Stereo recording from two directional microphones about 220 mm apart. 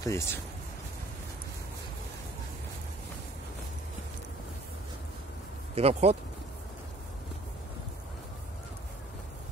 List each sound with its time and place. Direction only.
0.0 s speech: 15° left (ahead or behind)
5.8 s speech: 30° right (ahead or behind)